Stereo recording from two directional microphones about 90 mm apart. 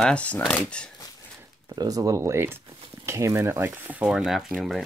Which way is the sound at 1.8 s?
40° right (ahead or behind).